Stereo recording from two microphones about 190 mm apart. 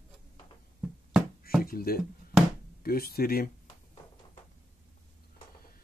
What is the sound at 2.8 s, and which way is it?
Speech, 50° left (ahead or behind).